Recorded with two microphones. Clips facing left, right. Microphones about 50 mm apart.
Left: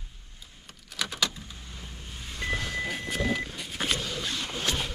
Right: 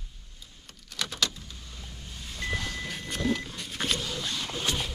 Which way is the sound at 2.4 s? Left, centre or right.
Centre.